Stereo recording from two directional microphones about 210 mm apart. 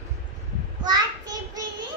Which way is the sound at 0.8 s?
20° right (ahead or behind).